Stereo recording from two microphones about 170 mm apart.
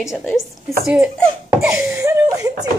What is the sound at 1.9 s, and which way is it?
Laughter, 15° right (ahead or behind).